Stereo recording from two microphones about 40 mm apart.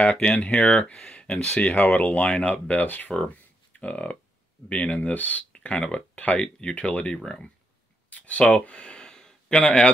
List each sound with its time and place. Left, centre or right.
0.1 s speech: left
2.2 s speech: left
2.5 s speech: left
5.5 s speech: left
8.1 s a sound: left; by 9.7 s centre